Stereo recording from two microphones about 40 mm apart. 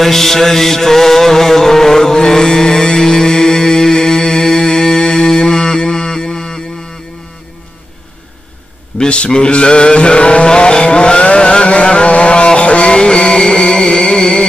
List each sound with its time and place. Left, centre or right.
0.0 s music: centre
8.9 s vehicle: left